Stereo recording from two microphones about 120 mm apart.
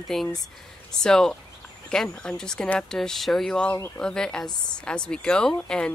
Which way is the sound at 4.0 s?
5° left (ahead or behind).